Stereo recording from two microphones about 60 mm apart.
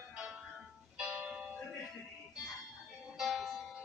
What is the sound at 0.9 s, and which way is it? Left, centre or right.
Music, right.